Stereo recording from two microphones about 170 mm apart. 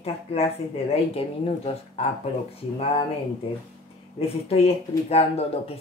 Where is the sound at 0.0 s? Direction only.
35° left (ahead or behind).